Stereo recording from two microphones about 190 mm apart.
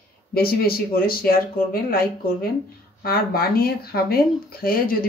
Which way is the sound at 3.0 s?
55° left (ahead or behind).